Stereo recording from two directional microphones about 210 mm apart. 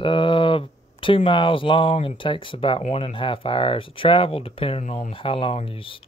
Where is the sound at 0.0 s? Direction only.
25° left (ahead or behind).